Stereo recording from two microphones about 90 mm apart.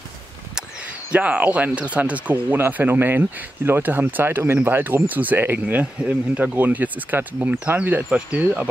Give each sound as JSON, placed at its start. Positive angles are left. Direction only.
{"t": 1.1, "sound": "speech", "side_deg": -15}